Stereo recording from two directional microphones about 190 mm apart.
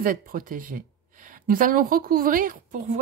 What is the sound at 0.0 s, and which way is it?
A woman's voice, 45° right (ahead or behind).